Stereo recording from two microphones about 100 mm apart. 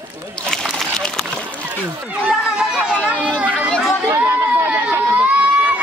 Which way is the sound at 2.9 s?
15° left (ahead or behind).